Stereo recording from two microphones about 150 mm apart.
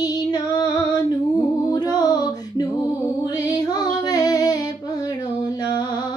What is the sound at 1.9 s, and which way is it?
Music, 25° left (ahead or behind).